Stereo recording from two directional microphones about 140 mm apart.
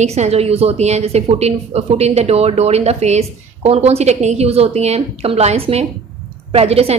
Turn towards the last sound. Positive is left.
turn(degrees=-45)  # may be behind; listen again after turning